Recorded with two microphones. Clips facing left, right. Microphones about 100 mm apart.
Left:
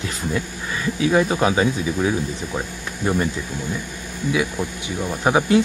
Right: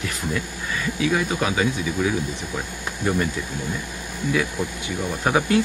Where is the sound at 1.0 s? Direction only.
35° left (ahead or behind).